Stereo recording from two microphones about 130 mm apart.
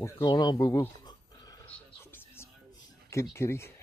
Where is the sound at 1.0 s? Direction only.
30° left (ahead or behind).